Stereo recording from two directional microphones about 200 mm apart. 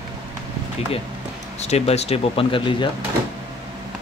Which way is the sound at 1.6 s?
30° left (ahead or behind).